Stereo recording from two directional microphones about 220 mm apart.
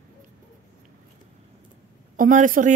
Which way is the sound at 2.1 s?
35° right (ahead or behind).